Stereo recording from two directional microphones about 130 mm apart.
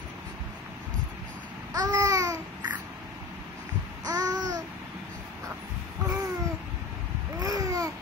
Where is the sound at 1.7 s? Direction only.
30° right (ahead or behind).